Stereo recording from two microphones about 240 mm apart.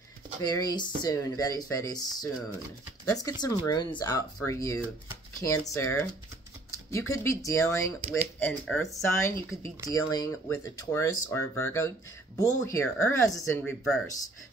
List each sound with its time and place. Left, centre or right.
0.4 s speech: centre
3.1 s speech: centre